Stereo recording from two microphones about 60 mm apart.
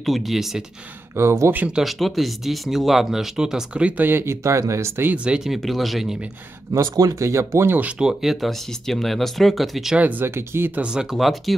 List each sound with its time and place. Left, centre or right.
0.0 s speech: centre
1.1 s speech: right
1.8 s speech: centre
3.8 s speech: right
4.4 s speech: right
5.1 s speech: centre
5.6 s speech: centre
6.8 s speech: right
8.0 s speech: centre
9.9 s speech: right
10.2 s speech: right
10.9 s speech: centre
11.1 s speech: centre